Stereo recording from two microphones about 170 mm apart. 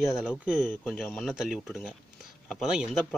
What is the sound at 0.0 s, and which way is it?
Speech, 5° right (ahead or behind).